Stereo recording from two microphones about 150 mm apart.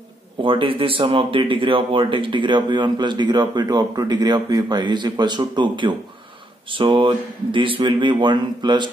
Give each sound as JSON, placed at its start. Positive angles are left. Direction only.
{"t": 0.4, "sound": "speech", "side_deg": -35}